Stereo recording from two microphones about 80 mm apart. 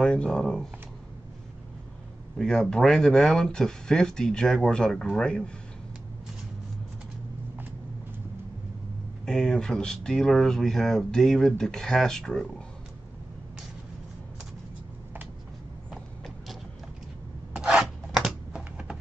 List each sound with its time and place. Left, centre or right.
0.0 s speech: centre
2.3 s speech: centre
9.2 s speech: centre
17.6 s rub: centre